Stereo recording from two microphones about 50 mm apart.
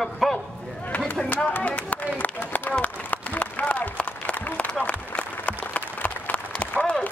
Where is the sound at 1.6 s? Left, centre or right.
Left.